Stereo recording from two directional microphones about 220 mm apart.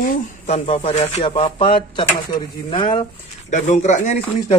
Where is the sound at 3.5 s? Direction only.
30° left (ahead or behind).